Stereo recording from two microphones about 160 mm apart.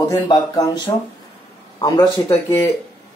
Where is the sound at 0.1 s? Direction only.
25° left (ahead or behind).